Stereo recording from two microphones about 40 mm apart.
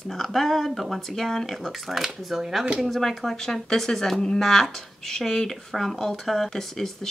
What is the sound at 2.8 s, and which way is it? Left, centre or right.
Speech, centre.